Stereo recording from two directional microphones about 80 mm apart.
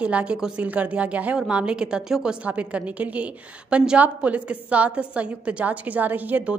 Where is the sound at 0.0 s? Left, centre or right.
Centre.